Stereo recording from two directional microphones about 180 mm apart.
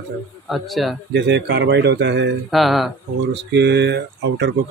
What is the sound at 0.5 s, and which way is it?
Speech, centre (ahead or behind).